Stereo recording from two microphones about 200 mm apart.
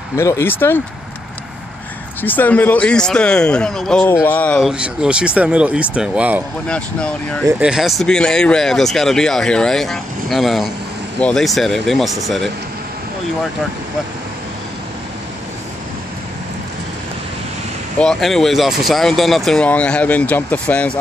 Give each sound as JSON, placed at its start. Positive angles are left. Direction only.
{"t": 0.1, "sound": "speech", "side_deg": 15}
{"t": 2.2, "sound": "speech", "side_deg": 10}
{"t": 6.7, "sound": "speech", "side_deg": 5}
{"t": 7.4, "sound": "speech", "side_deg": -5}
{"t": 17.9, "sound": "speech", "side_deg": 0}